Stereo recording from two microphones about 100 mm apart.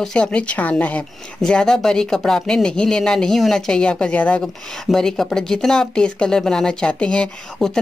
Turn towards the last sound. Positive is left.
turn(degrees=10)  # may be behind; listen again after turning